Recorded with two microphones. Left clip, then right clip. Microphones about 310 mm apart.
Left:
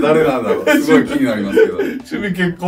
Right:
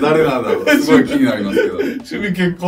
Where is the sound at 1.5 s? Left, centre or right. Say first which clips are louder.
Left 3 dB; centre.